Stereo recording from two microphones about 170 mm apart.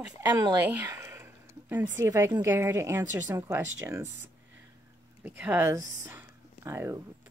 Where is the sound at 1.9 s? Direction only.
15° right (ahead or behind).